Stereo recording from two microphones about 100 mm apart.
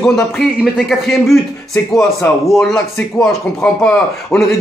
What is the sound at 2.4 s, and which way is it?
Speech, centre (ahead or behind).